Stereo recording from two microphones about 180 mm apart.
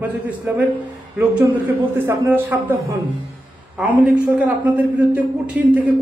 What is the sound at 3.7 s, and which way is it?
A man's voice, 5° right (ahead or behind).